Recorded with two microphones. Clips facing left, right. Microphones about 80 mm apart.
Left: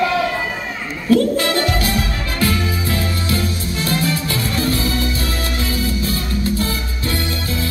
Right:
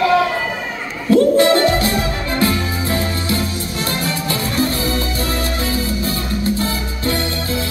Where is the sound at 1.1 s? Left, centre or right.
Right.